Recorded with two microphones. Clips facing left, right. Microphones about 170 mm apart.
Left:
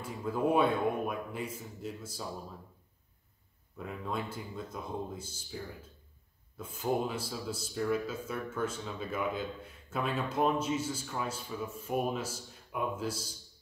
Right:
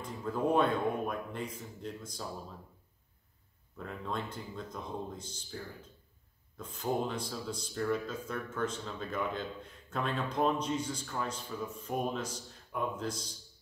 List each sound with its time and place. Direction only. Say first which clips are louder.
0.0 s speech: left 1 dB; 10° left (ahead or behind)
3.7 s speech: left 1 dB; 5° left (ahead or behind)